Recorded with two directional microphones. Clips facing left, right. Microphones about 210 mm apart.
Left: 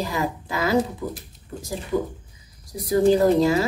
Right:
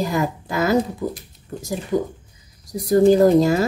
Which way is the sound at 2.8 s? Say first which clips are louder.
Right 4 dB; 45° right (ahead or behind).